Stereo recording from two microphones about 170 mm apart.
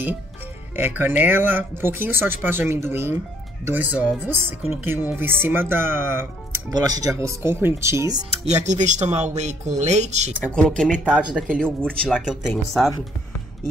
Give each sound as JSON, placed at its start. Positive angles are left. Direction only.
{"t": 0.7, "sound": "speech", "side_deg": -10}
{"t": 8.5, "sound": "speech", "side_deg": -45}
{"t": 10.4, "sound": "speech", "side_deg": 5}
{"t": 11.1, "sound": "speech", "side_deg": -5}
{"t": 11.8, "sound": "speech", "side_deg": 5}